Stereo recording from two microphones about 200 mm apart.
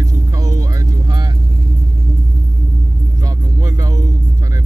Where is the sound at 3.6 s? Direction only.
20° right (ahead or behind).